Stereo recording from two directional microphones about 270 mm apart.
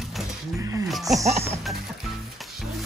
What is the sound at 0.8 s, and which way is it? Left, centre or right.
Music, centre.